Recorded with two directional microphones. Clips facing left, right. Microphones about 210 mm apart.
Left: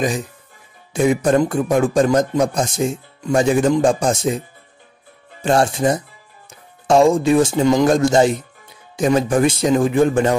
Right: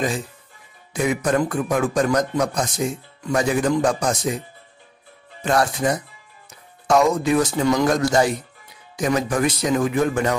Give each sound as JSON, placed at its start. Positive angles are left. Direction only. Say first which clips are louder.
{"t": 0.9, "sound": "a man's voice", "louder": "left 5 dB", "side_deg": 30}
{"t": 5.4, "sound": "a man's voice", "louder": "left 4 dB", "side_deg": 30}